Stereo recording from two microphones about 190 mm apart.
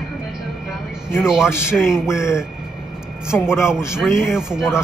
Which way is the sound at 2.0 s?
15° left (ahead or behind).